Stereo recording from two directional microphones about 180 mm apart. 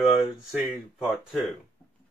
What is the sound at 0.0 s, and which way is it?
Speech, 5° right (ahead or behind).